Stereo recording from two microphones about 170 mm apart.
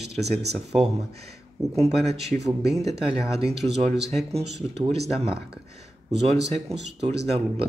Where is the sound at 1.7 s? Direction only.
35° right (ahead or behind).